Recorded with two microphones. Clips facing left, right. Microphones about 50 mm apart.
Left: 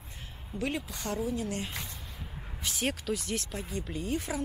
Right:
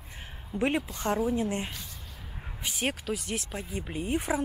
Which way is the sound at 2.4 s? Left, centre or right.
Centre.